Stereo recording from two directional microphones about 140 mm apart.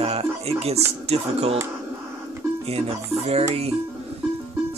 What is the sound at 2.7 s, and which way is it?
Speech, 45° right (ahead or behind).